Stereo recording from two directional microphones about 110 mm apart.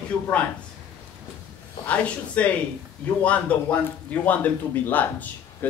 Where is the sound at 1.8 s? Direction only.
10° left (ahead or behind).